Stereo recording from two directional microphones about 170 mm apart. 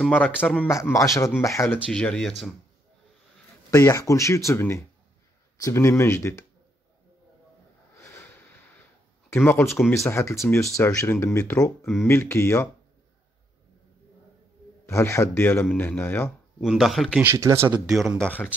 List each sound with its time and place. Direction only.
0.0 s speech: 10° left (ahead or behind)
1.9 s speech: 5° left (ahead or behind)
3.7 s speech: 15° left (ahead or behind)
7.9 s a sound: 15° left (ahead or behind)
9.3 s speech: 10° left (ahead or behind)
11.8 s speech: centre (ahead or behind)
12.1 s speech: 15° left (ahead or behind)
14.9 s speech: 15° left (ahead or behind)
16.5 s speech: centre (ahead or behind)
17.2 s speech: 15° right (ahead or behind)
17.9 s speech: 5° left (ahead or behind)